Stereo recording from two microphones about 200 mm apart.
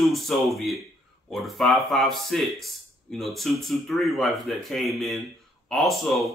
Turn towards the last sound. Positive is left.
turn(degrees=0)  # may be behind; listen again after turning